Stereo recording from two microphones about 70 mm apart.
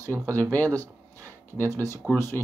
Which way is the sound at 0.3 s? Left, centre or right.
Left.